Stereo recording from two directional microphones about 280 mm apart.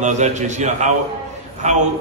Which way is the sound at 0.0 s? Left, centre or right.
Right.